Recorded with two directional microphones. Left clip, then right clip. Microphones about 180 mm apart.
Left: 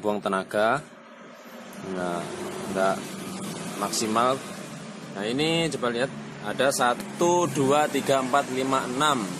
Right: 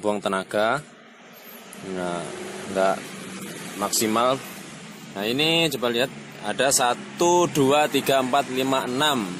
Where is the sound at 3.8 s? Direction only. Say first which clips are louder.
Right 2 dB; 40° right (ahead or behind).